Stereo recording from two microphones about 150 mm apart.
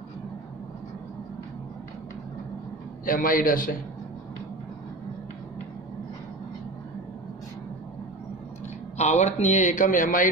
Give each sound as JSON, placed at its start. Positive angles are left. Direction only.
{"t": 3.1, "sound": "a man's voice", "side_deg": 70}
{"t": 8.9, "sound": "a man's voice", "side_deg": 50}